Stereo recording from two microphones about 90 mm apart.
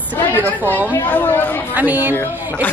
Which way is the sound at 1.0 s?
20° left (ahead or behind).